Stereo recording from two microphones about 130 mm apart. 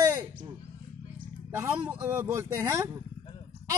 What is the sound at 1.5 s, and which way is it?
A man's voice, 15° right (ahead or behind).